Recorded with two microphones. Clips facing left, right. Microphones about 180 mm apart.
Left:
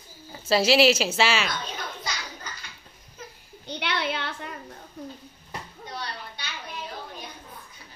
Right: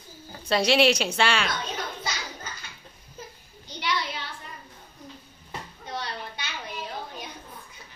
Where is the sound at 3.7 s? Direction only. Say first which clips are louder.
Left 2 dB; 60° left (ahead or behind).